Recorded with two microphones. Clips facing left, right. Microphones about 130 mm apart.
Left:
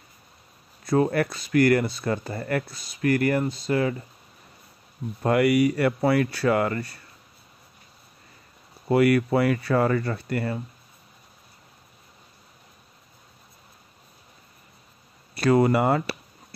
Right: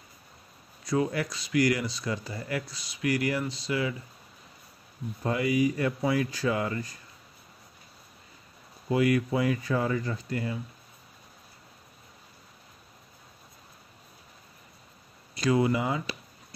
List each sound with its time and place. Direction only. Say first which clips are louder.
0.8 s speech: left 6 dB; 50° left (ahead or behind)
5.2 s speech: left 6 dB; 70° left (ahead or behind)
8.8 s speech: left 5 dB; 65° left (ahead or behind)
15.3 s speech: left 5 dB; 60° left (ahead or behind)